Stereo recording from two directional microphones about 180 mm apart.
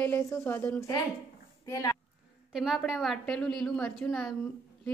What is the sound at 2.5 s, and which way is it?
A woman's voice, centre (ahead or behind).